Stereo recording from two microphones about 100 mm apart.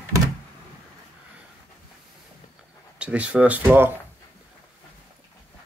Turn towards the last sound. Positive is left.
turn(degrees=-20)  # may be behind; listen again after turning